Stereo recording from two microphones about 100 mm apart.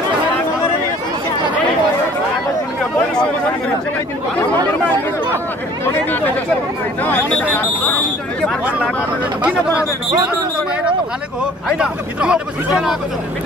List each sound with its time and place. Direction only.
7.1 s speech: 15° left (ahead or behind)
11.8 s speech: 10° right (ahead or behind)